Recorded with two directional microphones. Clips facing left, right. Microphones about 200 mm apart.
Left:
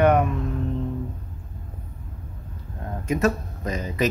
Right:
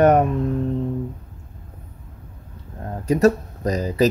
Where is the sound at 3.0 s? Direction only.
35° right (ahead or behind).